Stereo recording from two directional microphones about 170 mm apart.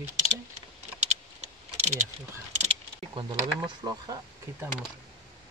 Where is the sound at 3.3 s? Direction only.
25° right (ahead or behind).